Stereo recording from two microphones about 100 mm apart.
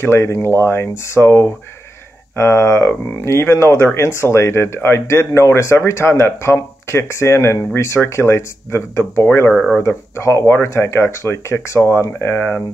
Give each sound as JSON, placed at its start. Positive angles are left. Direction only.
{"t": 0.0, "sound": "speech", "side_deg": 25}
{"t": 9.5, "sound": "speech", "side_deg": 5}
{"t": 9.8, "sound": "speech", "side_deg": 25}